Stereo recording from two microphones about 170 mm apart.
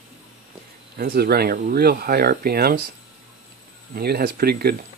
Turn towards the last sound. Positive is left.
turn(degrees=-65)  # may be behind; listen again after turning